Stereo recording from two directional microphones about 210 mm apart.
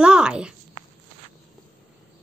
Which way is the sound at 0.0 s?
5° right (ahead or behind).